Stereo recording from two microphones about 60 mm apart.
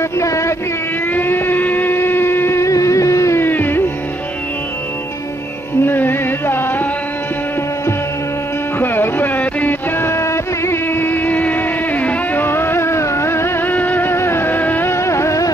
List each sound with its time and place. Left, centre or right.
0.2 s a sound: left
1.1 s a sound: left
2.6 s music: left
3.3 s music: left
5.8 s music: left
8.7 s music: left
12.4 s music: left
13.7 s music: left
14.1 s music: left
14.9 s music: left